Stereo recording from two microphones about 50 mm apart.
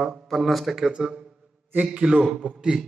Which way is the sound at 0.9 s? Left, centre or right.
Centre.